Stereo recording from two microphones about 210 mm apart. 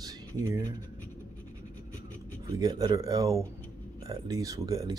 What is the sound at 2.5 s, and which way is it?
Speech, 20° right (ahead or behind).